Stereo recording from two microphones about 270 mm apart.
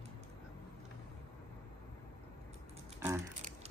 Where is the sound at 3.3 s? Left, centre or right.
Right.